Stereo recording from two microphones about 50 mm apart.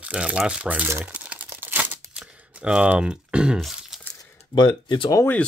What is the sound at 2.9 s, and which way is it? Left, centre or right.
Speech, centre.